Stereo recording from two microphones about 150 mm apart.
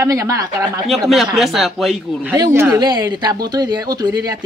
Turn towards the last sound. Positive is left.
turn(degrees=-25)  # may be behind; listen again after turning